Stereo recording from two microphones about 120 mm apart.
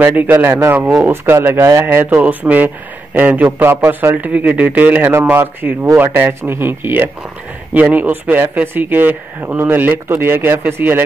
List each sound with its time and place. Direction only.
0.0 s a man's voice: 15° right (ahead or behind)